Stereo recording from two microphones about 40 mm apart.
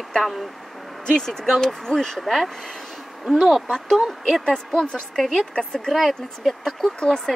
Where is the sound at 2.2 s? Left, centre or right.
Centre.